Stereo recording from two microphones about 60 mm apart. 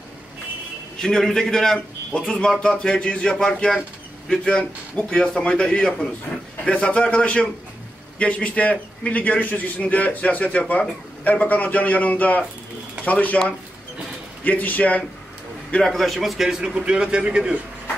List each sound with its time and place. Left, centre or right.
0.9 s a man's voice: centre; by 13.4 s left
14.4 s a man's voice: left
15.8 s a man's voice: centre